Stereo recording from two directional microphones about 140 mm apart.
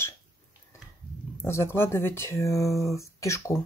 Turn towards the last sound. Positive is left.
turn(degrees=20)  # may be behind; listen again after turning